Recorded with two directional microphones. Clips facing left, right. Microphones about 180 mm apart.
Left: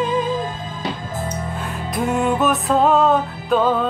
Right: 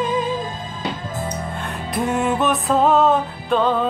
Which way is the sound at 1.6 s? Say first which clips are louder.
Even; centre (ahead or behind).